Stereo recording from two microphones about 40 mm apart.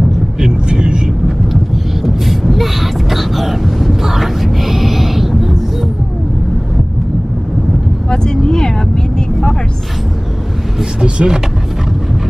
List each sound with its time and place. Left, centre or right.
0.4 s vehicle: right
2.0 s vehicle: centre
8.1 s vehicle: centre
10.8 s vehicle: centre